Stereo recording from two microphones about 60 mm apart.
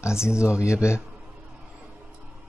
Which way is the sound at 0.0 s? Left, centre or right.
Left.